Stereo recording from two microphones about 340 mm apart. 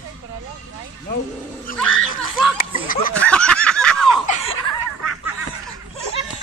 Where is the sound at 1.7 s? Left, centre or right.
Left.